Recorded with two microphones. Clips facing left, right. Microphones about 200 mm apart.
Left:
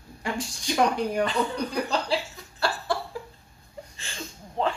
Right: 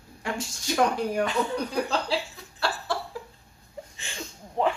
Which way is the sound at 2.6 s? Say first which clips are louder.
Left 2 dB; centre (ahead or behind).